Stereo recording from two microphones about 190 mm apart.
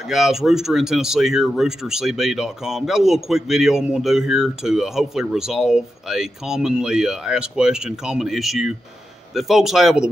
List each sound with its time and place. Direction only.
0.1 s speech: centre (ahead or behind)